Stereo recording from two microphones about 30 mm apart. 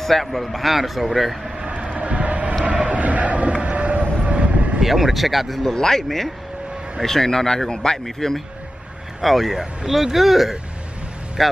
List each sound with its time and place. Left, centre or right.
0.0 s speech: centre
1.6 s vehicle: right
2.6 s a sound: right
4.2 s train: right
4.8 s speech: centre
5.6 s speech: centre
6.0 s speech: centre
7.1 s speech: centre
9.2 s speech: centre